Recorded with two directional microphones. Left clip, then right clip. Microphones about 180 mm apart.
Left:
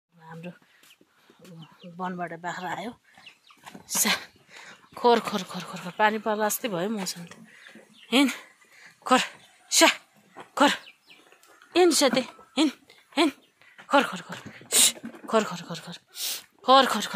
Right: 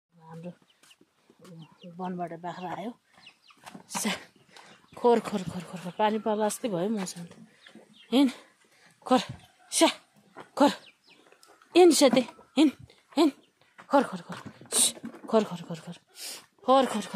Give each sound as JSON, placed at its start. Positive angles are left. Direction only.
{"t": 1.6, "sound": "speech", "side_deg": 20}
{"t": 2.0, "sound": "speech", "side_deg": -10}
{"t": 3.8, "sound": "dog", "side_deg": -15}
{"t": 5.3, "sound": "speech", "side_deg": -20}
{"t": 8.1, "sound": "speech", "side_deg": -20}
{"t": 10.5, "sound": "dog", "side_deg": -30}
{"t": 11.7, "sound": "speech", "side_deg": -45}
{"t": 13.8, "sound": "a sound", "side_deg": -25}
{"t": 15.2, "sound": "speech", "side_deg": -25}